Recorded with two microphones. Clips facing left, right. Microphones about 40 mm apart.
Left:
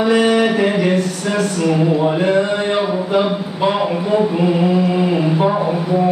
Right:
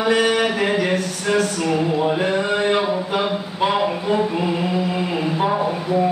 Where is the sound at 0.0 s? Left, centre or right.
Centre.